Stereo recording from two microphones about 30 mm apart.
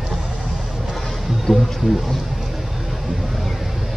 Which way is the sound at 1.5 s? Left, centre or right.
Centre.